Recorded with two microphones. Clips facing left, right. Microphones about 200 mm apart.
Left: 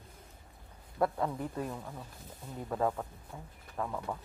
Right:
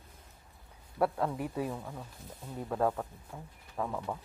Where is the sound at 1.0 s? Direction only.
5° right (ahead or behind).